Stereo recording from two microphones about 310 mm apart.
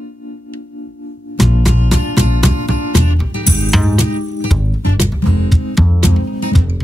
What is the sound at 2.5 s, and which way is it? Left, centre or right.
Music, left.